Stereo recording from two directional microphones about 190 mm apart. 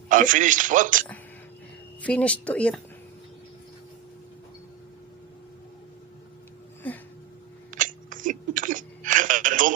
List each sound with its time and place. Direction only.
0.1 s a man's voice: 45° right (ahead or behind)
2.0 s speech: 5° left (ahead or behind)
7.7 s throat clearing: 45° right (ahead or behind)